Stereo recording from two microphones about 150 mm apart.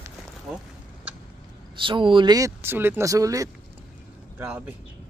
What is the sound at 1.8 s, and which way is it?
Speech, 35° right (ahead or behind).